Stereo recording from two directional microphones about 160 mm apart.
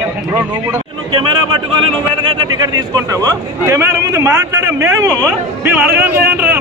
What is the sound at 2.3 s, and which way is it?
A man's voice, 25° right (ahead or behind).